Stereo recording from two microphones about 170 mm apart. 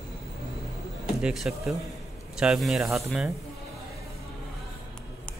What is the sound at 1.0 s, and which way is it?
Speech, 5° right (ahead or behind).